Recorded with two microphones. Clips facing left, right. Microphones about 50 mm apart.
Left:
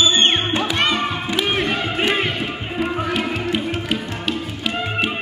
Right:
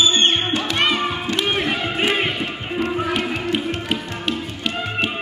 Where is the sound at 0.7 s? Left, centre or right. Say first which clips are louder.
Right 1 dB; centre.